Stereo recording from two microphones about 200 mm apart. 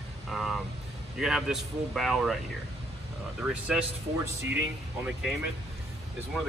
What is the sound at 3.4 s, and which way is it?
Speech, 5° right (ahead or behind).